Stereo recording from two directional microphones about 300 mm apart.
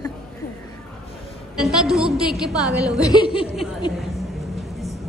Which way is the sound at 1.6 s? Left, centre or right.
Centre.